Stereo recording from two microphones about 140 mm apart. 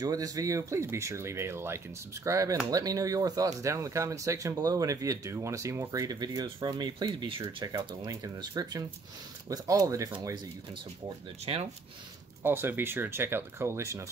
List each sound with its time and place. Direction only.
0.0 s speech: 25° right (ahead or behind)
7.6 s speech: 25° right (ahead or behind)
11.5 s speech: 40° right (ahead or behind)
12.4 s speech: 15° right (ahead or behind)